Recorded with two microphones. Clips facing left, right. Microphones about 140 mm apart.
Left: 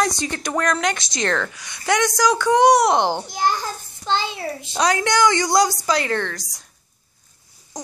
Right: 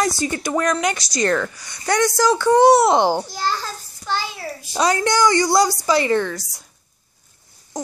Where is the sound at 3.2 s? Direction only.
20° left (ahead or behind).